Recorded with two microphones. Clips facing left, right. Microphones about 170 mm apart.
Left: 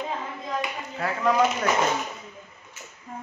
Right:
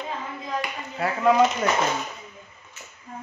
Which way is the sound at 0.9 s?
5° right (ahead or behind).